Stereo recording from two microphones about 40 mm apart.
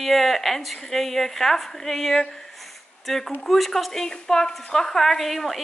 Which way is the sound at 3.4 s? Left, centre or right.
Centre.